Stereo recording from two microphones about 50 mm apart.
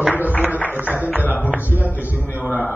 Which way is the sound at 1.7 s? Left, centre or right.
Left.